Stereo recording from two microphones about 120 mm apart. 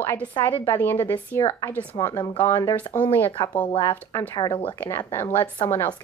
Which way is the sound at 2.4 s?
20° left (ahead or behind).